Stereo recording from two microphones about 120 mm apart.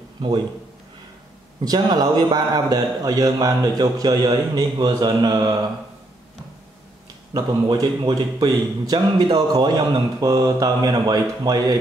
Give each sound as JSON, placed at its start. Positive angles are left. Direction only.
{"t": 1.6, "sound": "speech", "side_deg": -35}
{"t": 7.3, "sound": "speech", "side_deg": -35}